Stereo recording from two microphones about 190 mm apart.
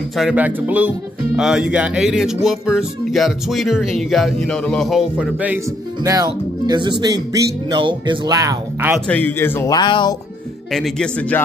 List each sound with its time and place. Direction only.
0.1 s speech: 5° right (ahead or behind)
6.0 s speech: 20° right (ahead or behind)
8.9 s speech: 5° left (ahead or behind); by 10.1 s 25° left (ahead or behind)
10.7 s speech: 5° left (ahead or behind)